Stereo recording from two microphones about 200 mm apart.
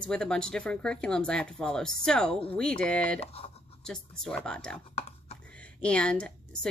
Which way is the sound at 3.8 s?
5° left (ahead or behind).